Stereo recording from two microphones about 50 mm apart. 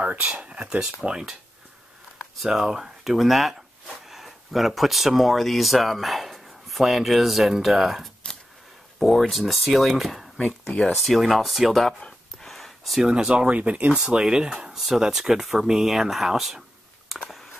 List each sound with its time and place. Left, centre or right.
0.0 s speech: right
2.4 s speech: centre
12.0 s gasp: centre
13.0 s speech: centre
13.9 s speech: centre